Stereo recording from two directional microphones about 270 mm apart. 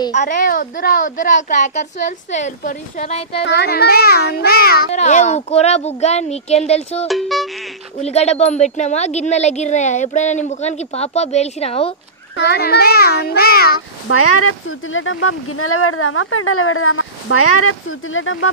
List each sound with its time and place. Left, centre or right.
0.1 s speech: left
3.4 s speech: left
7.1 s speech: centre
8.0 s speech: left
12.4 s a child's voice: left
14.1 s speech: left